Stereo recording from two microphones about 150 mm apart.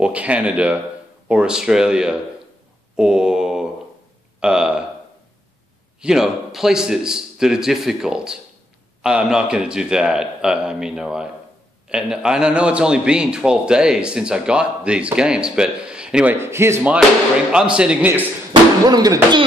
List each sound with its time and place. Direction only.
0.0 s a man's voice: 10° right (ahead or behind)
5.9 s a man's voice: 5° right (ahead or behind)
16.3 s a man's voice: 15° right (ahead or behind)
18.5 s speech: 25° right (ahead or behind)